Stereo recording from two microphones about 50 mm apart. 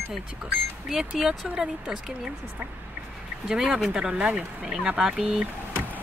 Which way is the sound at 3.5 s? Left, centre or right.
Centre.